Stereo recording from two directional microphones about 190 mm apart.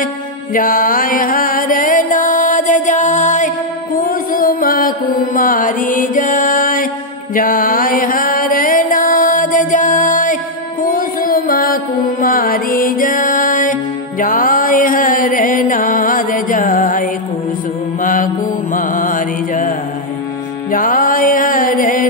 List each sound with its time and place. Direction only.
0.0 s music: 45° left (ahead or behind)
18.0 s mantra: 45° left (ahead or behind)
20.7 s music: 45° left (ahead or behind)